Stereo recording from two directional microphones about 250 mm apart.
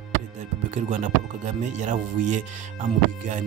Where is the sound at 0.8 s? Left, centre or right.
Right.